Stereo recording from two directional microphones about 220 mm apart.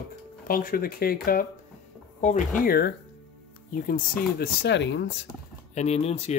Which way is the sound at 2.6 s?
45° left (ahead or behind).